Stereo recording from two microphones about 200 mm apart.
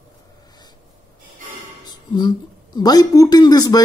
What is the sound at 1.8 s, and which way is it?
Music, 20° left (ahead or behind).